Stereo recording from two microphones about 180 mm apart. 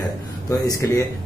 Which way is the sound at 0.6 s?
20° left (ahead or behind).